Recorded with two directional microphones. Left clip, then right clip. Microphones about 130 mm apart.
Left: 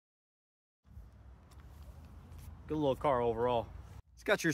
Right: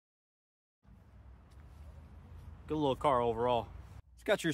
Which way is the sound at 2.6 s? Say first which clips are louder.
Right 1 dB; 25° right (ahead or behind).